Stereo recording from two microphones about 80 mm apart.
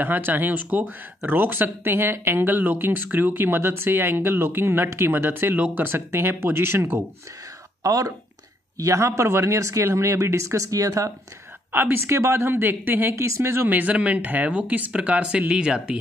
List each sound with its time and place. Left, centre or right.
0.0 s speech: right
7.8 s speech: right
11.7 s speech: right